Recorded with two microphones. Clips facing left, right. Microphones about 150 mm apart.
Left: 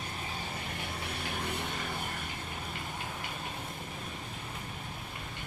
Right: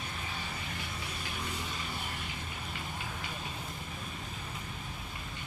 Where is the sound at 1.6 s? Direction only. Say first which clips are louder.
Left 3 dB; 60° left (ahead or behind).